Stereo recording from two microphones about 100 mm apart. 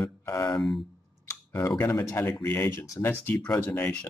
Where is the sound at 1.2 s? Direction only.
30° left (ahead or behind).